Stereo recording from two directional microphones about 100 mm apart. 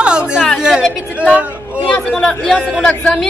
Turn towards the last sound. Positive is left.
turn(degrees=5)  # may be behind; listen again after turning